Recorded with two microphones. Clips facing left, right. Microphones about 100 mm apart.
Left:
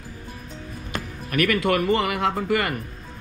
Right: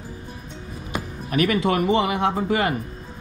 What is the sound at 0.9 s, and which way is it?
Music, 10° right (ahead or behind).